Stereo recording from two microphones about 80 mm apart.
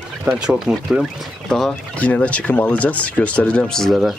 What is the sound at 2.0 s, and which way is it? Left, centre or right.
Speech, centre.